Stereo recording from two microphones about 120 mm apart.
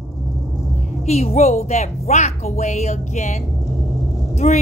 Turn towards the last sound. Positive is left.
turn(degrees=65)  # may be behind; listen again after turning